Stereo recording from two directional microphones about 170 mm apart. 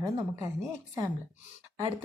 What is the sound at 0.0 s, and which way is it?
Speech, 20° right (ahead or behind).